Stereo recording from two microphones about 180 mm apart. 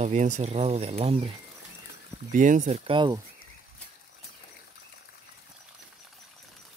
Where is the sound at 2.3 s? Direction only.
45° right (ahead or behind).